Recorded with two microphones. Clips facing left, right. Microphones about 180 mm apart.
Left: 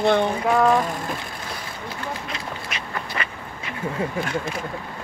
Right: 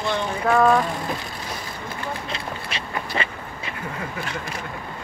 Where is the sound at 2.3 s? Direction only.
30° right (ahead or behind).